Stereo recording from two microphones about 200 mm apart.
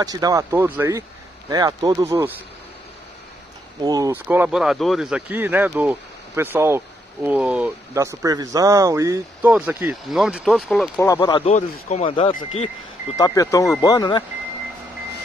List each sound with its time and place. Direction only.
0.0 s speech: 20° right (ahead or behind)
3.8 s speech: 20° right (ahead or behind); by 10.9 s centre (ahead or behind)
11.0 s speech: 15° left (ahead or behind)
11.5 s speech: 35° left (ahead or behind)
13.2 s speech: 15° left (ahead or behind)